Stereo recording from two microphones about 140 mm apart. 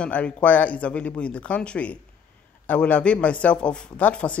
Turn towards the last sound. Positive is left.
turn(degrees=10)  # may be behind; listen again after turning